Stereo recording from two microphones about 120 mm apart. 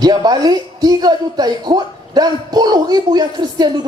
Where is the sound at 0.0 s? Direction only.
35° right (ahead or behind).